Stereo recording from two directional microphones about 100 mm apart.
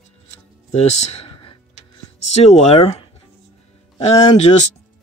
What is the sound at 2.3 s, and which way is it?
Speech, 90° left.